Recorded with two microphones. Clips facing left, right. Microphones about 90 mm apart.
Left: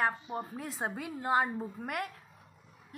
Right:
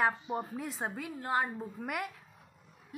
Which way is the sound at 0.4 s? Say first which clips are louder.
Even; centre (ahead or behind).